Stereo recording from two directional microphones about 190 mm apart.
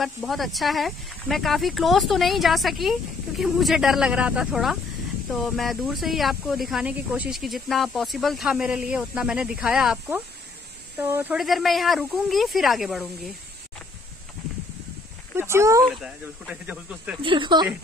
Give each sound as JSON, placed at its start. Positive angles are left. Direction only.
{"t": 0.0, "sound": "speech", "side_deg": 0}
{"t": 11.0, "sound": "speech", "side_deg": -15}
{"t": 11.3, "sound": "speech", "side_deg": 0}
{"t": 15.3, "sound": "speech", "side_deg": -15}
{"t": 15.8, "sound": "speech", "side_deg": 0}
{"t": 17.2, "sound": "speech", "side_deg": -25}